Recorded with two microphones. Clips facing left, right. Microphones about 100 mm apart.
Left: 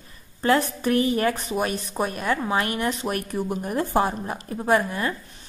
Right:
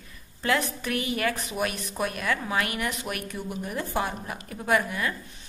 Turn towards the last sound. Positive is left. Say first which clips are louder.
# left 4 dB
turn(degrees=35)  # may be behind; listen again after turning